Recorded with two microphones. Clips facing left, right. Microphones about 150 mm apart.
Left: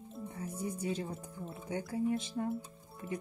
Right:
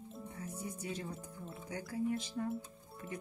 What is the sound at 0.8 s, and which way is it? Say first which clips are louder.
Speech: left 5 dB; 30° left (ahead or behind).